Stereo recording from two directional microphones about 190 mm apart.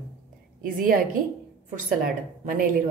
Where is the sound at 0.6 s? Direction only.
45° right (ahead or behind).